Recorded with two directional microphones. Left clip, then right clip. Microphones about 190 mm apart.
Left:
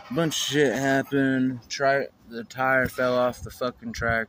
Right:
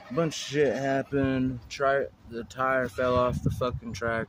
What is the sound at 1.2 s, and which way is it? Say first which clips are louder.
Speech: left 4 dB; centre (ahead or behind).